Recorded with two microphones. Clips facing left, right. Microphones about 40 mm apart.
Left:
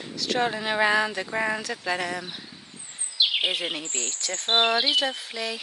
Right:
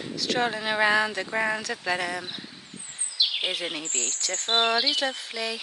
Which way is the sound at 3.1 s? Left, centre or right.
Left.